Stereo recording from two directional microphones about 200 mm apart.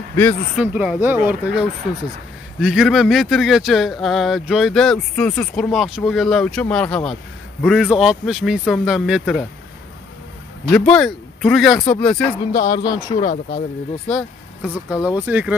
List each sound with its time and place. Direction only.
0.1 s speech: 10° left (ahead or behind)
0.6 s speech: 5° right (ahead or behind)
10.7 s speech: 5° left (ahead or behind)
12.5 s speech: 20° left (ahead or behind)
13.2 s speech: 40° left (ahead or behind)
14.0 s speech: centre (ahead or behind)
15.0 s speech: 15° left (ahead or behind)
15.2 s speech: 10° right (ahead or behind)